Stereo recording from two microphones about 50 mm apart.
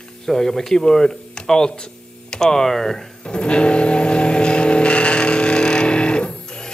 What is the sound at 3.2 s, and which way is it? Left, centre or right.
Train, centre.